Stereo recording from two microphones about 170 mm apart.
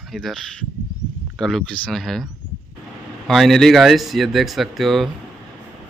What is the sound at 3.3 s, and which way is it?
Speech, centre (ahead or behind).